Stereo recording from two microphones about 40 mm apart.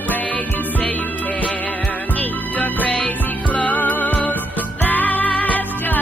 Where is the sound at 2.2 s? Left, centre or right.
Left.